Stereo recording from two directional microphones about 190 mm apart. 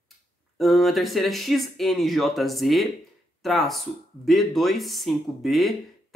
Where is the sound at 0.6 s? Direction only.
Centre (ahead or behind).